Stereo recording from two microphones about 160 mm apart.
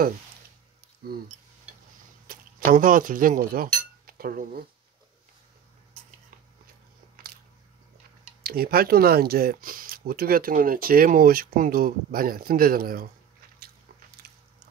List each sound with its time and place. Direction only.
2.2 s speech: 60° right (ahead or behind)
8.4 s speech: 70° right (ahead or behind)